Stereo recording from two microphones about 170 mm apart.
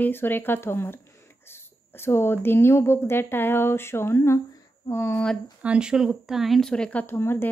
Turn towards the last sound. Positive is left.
turn(degrees=15)  # may be behind; listen again after turning